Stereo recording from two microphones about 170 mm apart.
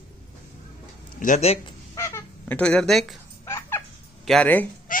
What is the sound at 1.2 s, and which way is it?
Speech, 45° left (ahead or behind).